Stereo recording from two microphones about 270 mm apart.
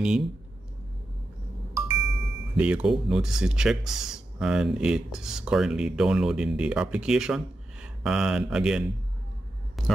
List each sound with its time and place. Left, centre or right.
0.0 s speech: centre
2.5 s speech: centre
9.8 s a sound: centre